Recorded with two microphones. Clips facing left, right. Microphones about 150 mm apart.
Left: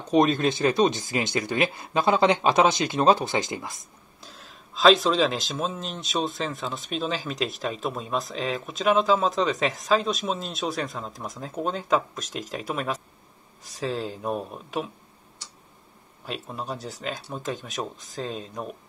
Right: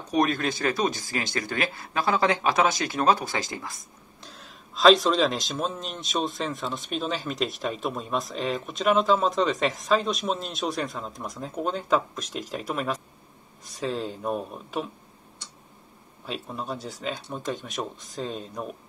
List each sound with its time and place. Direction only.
0.1 s speech: 25° left (ahead or behind)
4.2 s speech: centre (ahead or behind)
16.3 s speech: centre (ahead or behind)